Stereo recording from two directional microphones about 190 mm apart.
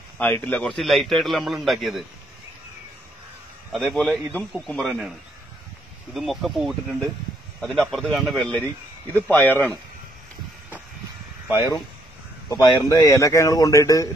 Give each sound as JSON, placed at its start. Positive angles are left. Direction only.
{"t": 0.2, "sound": "a man's voice", "side_deg": 10}
{"t": 3.7, "sound": "a man's voice", "side_deg": 5}
{"t": 6.1, "sound": "a man's voice", "side_deg": 0}
{"t": 12.4, "sound": "a man's voice", "side_deg": 20}